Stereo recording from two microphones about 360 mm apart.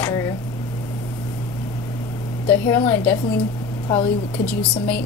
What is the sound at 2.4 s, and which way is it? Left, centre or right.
A woman's voice, centre.